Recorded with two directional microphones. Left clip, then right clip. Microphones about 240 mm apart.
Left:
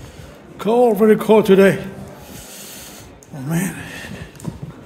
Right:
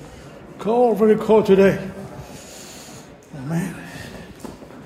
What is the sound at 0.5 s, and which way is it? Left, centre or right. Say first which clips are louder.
A man's voice: left 3 dB; left.